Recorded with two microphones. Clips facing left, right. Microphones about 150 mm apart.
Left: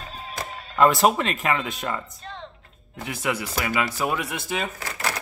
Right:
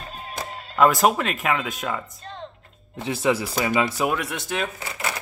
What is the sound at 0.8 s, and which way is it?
Speech, centre (ahead or behind).